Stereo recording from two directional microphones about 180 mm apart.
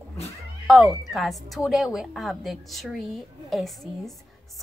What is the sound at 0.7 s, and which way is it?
A woman's voice, centre (ahead or behind).